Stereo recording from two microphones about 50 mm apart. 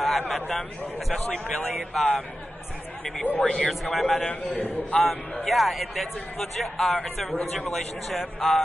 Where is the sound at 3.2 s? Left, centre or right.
Left.